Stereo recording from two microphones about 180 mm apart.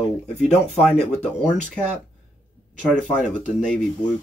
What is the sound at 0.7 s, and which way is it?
Speech, 5° left (ahead or behind).